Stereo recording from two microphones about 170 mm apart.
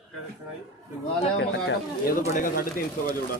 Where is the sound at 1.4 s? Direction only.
90° left.